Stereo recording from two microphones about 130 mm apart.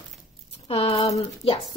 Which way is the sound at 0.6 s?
50° left (ahead or behind).